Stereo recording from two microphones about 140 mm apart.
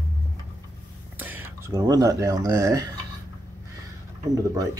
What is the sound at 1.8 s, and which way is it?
Speech, 25° right (ahead or behind).